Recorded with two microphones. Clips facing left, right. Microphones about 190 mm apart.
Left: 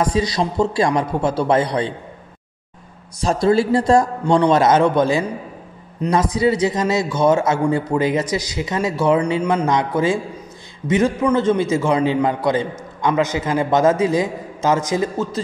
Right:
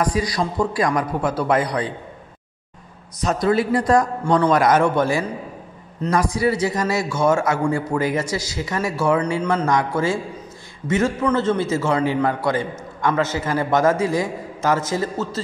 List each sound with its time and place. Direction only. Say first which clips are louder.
0.0 s a man's voice: left 2 dB; 25° left (ahead or behind)
3.2 s a man's voice: left 3 dB; 30° left (ahead or behind)